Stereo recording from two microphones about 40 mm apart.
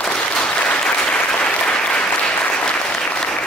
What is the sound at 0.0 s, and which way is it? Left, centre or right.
Applause, left.